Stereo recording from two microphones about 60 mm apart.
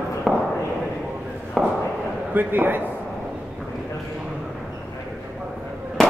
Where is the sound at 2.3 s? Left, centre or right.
Right.